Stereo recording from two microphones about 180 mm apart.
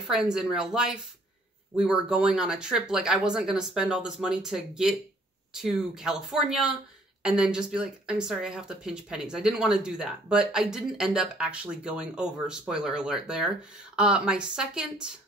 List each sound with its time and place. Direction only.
0.0 s speech: 5° right (ahead or behind)